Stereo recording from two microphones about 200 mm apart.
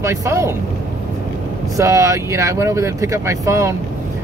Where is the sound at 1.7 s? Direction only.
15° right (ahead or behind).